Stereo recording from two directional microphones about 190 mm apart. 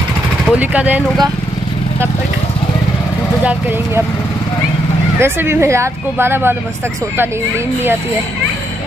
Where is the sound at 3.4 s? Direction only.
10° right (ahead or behind).